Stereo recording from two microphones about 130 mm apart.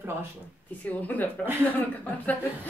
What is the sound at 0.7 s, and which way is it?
Speech, 10° left (ahead or behind).